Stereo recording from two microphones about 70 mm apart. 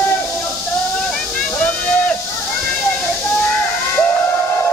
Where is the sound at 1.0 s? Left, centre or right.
Centre.